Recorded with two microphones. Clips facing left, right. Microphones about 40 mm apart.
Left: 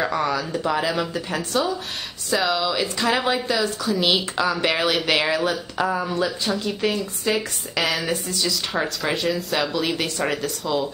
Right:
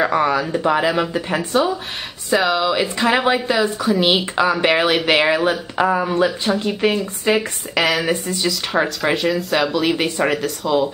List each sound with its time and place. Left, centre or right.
0.0 s speech: right
7.7 s speech: centre
8.0 s speech: right
8.5 s speech: centre
9.9 s speech: right
10.3 s speech: centre